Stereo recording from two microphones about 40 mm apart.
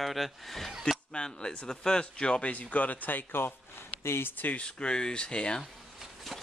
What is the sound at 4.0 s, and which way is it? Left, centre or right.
Speech, left.